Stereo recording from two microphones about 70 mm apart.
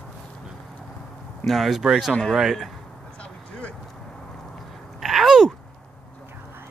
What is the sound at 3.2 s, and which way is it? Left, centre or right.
Vehicle, centre.